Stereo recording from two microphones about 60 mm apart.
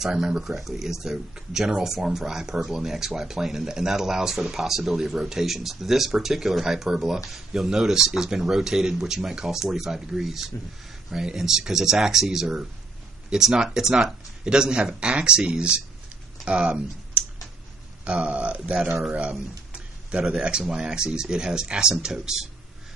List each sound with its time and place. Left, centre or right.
0.0 s speech: centre
18.1 s speech: centre
19.7 s a sound: centre
20.2 s speech: centre